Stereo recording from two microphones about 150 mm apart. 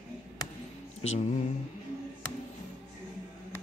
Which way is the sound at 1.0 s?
50° left (ahead or behind).